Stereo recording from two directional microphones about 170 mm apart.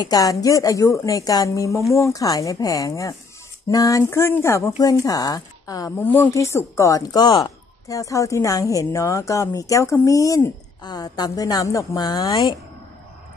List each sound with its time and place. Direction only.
0.0 s speech: 20° left (ahead or behind)
5.9 s speech: 10° left (ahead or behind)